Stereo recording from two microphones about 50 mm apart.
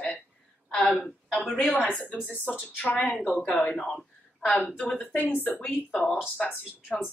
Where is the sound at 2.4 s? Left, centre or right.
Left.